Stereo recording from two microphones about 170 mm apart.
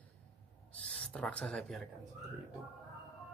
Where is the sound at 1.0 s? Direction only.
5° left (ahead or behind).